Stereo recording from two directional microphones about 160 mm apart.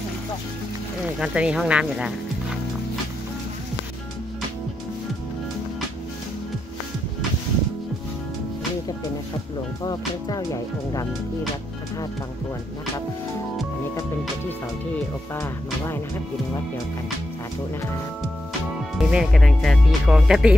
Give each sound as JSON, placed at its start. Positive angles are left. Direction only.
{"t": 1.2, "sound": "speech", "side_deg": -5}
{"t": 9.8, "sound": "speech", "side_deg": 25}
{"t": 18.9, "sound": "speech", "side_deg": 0}